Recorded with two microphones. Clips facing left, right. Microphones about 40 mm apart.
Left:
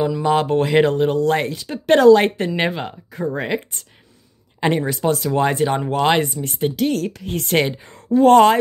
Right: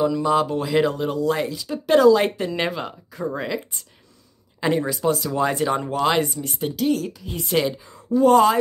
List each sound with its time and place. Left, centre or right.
0.2 s speech: left
3.3 s speech: left